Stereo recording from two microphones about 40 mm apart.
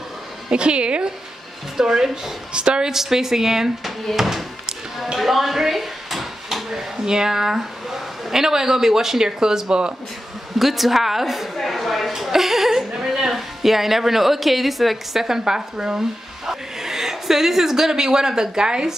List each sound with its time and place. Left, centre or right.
0.5 s a woman's voice: right
1.8 s speech: centre
2.5 s a woman's voice: right
2.9 s speech: centre
10.6 s a woman's voice: centre
11.5 s a sound: centre
12.1 s a woman's voice: centre